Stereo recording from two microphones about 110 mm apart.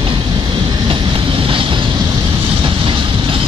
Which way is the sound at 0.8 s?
50° right (ahead or behind).